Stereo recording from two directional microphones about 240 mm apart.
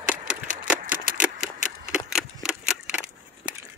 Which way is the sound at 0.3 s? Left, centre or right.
Centre.